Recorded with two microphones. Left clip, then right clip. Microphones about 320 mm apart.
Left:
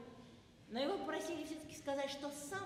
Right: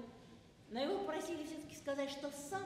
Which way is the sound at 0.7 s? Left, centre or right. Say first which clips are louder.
Right 1 dB; left.